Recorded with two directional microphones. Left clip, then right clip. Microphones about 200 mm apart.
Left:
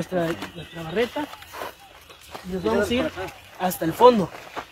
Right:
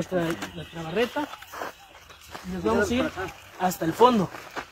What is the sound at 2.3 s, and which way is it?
Speech, 5° left (ahead or behind).